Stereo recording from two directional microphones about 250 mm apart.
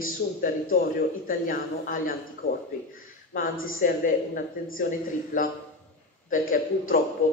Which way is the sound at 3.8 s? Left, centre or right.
Left.